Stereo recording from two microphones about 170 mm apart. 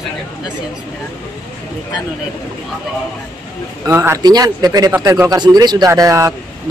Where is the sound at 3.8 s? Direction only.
15° right (ahead or behind).